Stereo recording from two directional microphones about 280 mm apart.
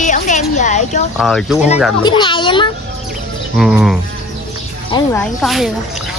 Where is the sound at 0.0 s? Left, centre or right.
Left.